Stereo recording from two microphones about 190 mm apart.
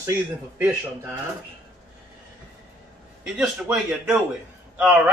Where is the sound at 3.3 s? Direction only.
10° right (ahead or behind).